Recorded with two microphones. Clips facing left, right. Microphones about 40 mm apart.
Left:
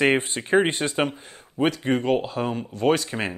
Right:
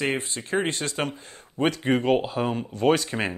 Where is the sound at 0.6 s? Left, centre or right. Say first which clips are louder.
Left 5 dB; left.